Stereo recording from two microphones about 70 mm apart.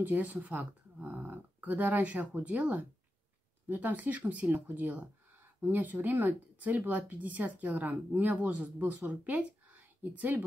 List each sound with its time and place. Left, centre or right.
0.0 s speech: right